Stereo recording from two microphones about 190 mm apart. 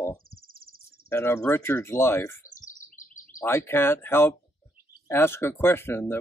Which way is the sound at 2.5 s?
40° left (ahead or behind).